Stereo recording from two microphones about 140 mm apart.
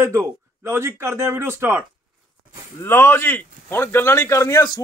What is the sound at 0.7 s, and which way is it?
Speech, 20° right (ahead or behind).